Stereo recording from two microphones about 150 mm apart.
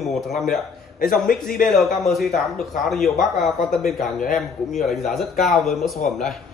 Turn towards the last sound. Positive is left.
turn(degrees=0)  # may be behind; listen again after turning